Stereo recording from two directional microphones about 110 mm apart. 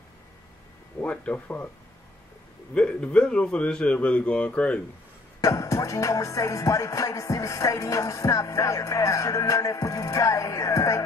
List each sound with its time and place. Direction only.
1.0 s a man's voice: 15° left (ahead or behind)
2.7 s a man's voice: 10° left (ahead or behind)
5.4 s music: 30° left (ahead or behind)